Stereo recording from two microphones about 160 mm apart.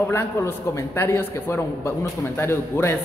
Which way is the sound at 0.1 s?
15° left (ahead or behind).